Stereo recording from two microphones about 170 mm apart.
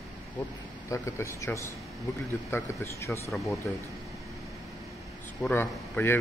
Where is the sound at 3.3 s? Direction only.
Centre (ahead or behind).